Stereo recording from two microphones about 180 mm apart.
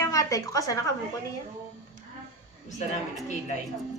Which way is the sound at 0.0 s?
20° left (ahead or behind).